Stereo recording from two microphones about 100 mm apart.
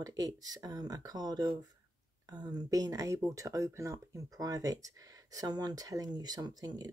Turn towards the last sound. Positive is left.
turn(degrees=-40)  # may be behind; listen again after turning